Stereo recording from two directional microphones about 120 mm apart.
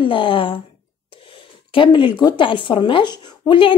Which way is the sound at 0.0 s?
45° left (ahead or behind).